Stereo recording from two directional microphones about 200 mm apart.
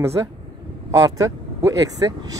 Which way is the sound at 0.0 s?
15° right (ahead or behind).